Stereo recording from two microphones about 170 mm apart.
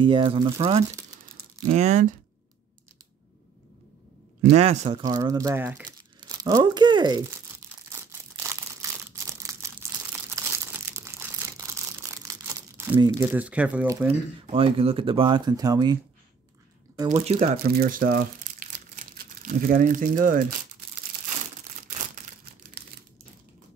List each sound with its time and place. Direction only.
0.0 s speech: 30° right (ahead or behind)
1.7 s speech: 40° right (ahead or behind)
4.4 s speech: 40° right (ahead or behind)
5.0 s speech: 20° right (ahead or behind)
7.9 s crumpling: 15° right (ahead or behind)
13.2 s speech: 10° right (ahead or behind)
14.4 s speech: 35° right (ahead or behind)
17.1 s speech: 40° right (ahead or behind)
17.5 s speech: 60° right (ahead or behind)